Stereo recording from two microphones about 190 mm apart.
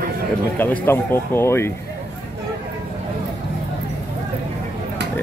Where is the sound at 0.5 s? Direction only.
10° left (ahead or behind).